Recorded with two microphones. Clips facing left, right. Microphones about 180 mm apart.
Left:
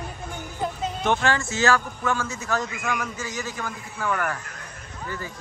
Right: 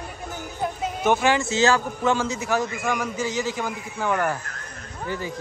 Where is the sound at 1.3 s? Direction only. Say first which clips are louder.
Right 2 dB; 20° right (ahead or behind).